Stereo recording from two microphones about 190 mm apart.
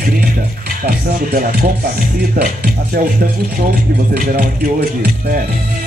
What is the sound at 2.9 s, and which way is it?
Speech, 50° right (ahead or behind).